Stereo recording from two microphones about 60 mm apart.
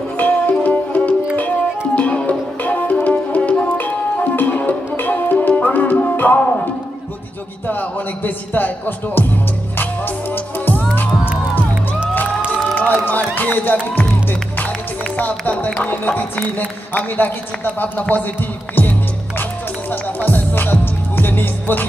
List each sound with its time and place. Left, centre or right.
0.2 s music: left
7.6 s speech: left
9.8 s music: left
12.7 s music: left
15.1 s speech: left
18.8 s music: left